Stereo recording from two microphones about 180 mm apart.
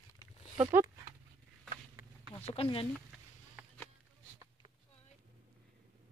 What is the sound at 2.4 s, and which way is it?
Speech, 30° left (ahead or behind).